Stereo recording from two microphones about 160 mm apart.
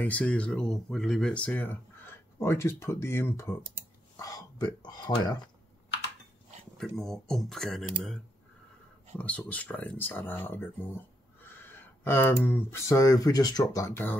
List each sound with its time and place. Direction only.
0.0 s speech: 10° left (ahead or behind); by 5.5 s 25° left (ahead or behind)
6.8 s speech: 5° left (ahead or behind)
9.2 s speech: 10° left (ahead or behind)